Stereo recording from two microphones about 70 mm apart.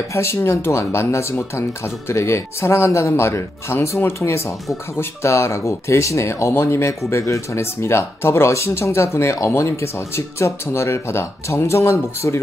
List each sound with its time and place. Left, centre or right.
0.1 s speech: left